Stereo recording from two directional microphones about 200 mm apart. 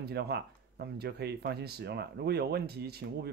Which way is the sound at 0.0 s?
55° right (ahead or behind).